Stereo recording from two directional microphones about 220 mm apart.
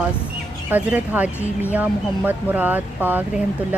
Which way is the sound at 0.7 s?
10° right (ahead or behind).